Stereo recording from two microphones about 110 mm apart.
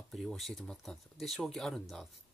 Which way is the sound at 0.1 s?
Centre (ahead or behind).